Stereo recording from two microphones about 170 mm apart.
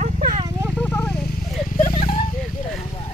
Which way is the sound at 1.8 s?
45° left (ahead or behind).